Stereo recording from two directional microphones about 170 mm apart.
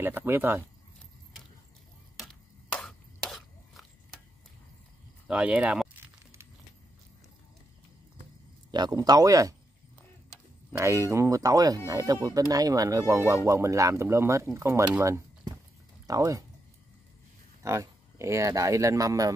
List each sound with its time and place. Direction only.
0.0 s speech: 10° right (ahead or behind)
2.1 s a sound: centre (ahead or behind)
5.3 s a sound: 5° right (ahead or behind)
8.7 s speech: 25° right (ahead or behind)
10.7 s speech: 15° right (ahead or behind)
17.6 s speech: 15° right (ahead or behind)